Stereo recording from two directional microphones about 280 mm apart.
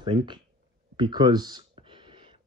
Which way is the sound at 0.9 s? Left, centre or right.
Centre.